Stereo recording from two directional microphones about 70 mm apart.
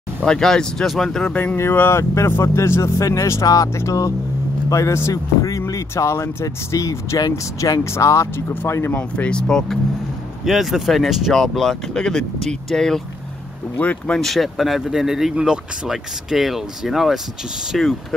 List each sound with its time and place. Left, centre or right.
0.2 s speech: centre
1.3 s speech: left
1.6 s a man's voice: left
5.1 s vehicle: left
5.7 s speech: left
7.2 s speech: left
7.8 s speech: left
8.9 s speech: centre
10.4 s speech: centre
13.7 s speech: centre
14.2 s speech: centre